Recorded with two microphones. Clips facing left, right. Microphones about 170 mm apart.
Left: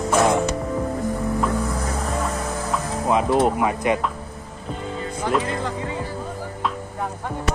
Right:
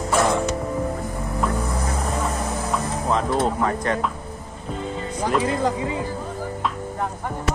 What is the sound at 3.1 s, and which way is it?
Speech, 10° left (ahead or behind).